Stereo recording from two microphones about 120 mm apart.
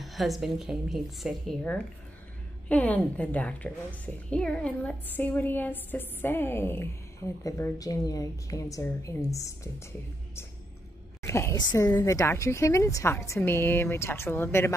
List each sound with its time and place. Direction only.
0.0 s a woman's voice: centre (ahead or behind)
2.7 s a woman's voice: 15° left (ahead or behind)
11.2 s a woman's voice: 20° left (ahead or behind)